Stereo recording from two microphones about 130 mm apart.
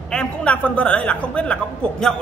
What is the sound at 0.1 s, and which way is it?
A man's voice, 5° left (ahead or behind).